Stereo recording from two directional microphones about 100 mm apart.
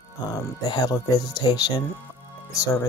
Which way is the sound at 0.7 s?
40° left (ahead or behind).